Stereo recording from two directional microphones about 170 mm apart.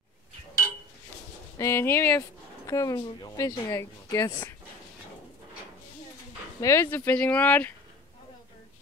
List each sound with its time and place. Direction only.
1.6 s a woman's voice: 15° left (ahead or behind)
6.6 s speech: 15° left (ahead or behind)